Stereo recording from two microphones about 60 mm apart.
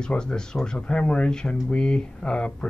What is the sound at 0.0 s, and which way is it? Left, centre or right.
Speech, centre.